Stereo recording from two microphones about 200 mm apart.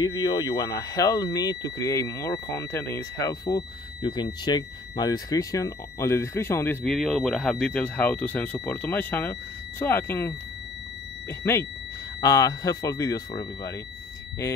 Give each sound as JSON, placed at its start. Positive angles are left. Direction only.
{"t": 0.0, "sound": "speech", "side_deg": 20}